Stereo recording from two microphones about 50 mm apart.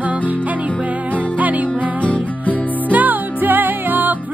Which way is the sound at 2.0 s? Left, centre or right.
Left.